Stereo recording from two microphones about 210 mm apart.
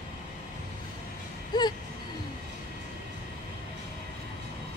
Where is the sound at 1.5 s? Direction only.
20° left (ahead or behind).